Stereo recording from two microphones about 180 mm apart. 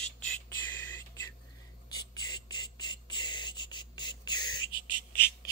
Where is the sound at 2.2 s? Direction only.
25° left (ahead or behind).